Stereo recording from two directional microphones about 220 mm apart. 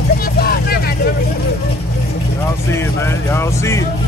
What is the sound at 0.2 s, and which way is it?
Vehicle, 45° left (ahead or behind).